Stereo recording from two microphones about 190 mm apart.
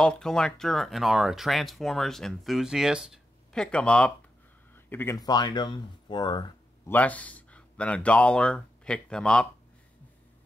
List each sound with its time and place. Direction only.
0.0 s speech: 5° left (ahead or behind); by 6.4 s 20° left (ahead or behind)
6.9 s speech: 10° left (ahead or behind)